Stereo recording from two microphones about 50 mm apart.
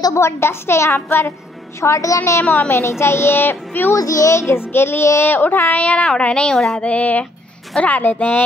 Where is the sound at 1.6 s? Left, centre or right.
Left.